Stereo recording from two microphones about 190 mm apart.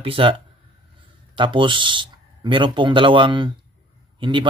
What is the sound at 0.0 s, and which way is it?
Speech, 30° right (ahead or behind).